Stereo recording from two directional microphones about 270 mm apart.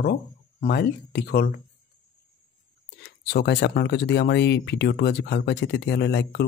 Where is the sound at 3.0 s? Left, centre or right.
Left.